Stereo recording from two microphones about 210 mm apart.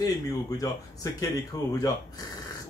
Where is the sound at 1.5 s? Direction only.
15° left (ahead or behind).